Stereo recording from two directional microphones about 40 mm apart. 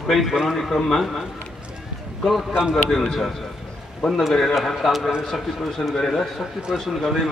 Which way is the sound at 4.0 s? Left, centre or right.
Centre.